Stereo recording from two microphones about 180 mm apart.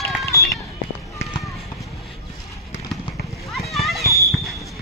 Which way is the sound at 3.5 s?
Centre (ahead or behind).